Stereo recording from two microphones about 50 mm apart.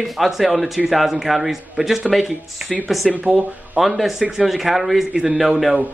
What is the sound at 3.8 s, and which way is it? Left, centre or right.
A man's voice, centre.